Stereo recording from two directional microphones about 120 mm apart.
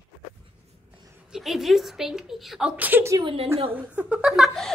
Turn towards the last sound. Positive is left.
turn(degrees=-5)  # may be behind; listen again after turning